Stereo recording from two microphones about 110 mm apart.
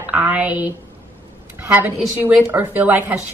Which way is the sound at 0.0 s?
15° right (ahead or behind).